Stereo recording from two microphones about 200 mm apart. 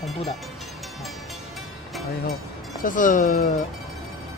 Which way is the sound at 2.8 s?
40° left (ahead or behind).